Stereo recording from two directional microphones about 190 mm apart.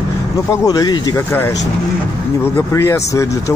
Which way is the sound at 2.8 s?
15° left (ahead or behind).